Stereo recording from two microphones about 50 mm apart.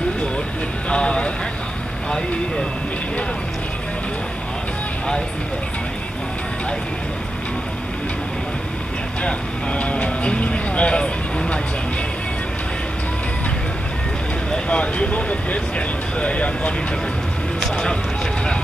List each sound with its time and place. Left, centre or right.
0.8 s speech: left
9.2 s speech: left
14.5 s speech: left
17.6 s run: centre